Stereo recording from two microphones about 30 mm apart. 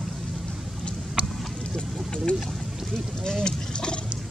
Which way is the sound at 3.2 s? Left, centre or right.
Left.